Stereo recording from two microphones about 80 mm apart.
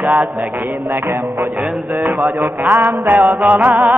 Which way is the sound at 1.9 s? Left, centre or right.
Right.